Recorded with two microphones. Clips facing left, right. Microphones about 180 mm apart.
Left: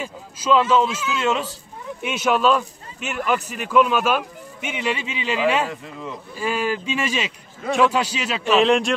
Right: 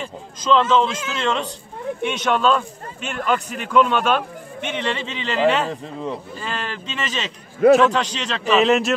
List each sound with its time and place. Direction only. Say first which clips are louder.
0.0 s speech: even; 10° left (ahead or behind)
5.7 s speech: right 5 dB; 35° right (ahead or behind)
6.4 s speech: left 11 dB; 10° left (ahead or behind)